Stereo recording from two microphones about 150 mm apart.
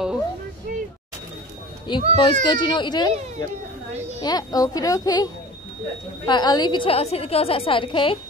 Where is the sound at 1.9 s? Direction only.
30° left (ahead or behind).